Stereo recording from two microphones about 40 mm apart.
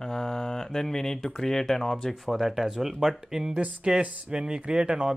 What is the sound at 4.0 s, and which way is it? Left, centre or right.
Speech, right.